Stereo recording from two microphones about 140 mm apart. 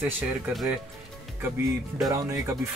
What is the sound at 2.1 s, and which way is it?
Speech, 20° right (ahead or behind).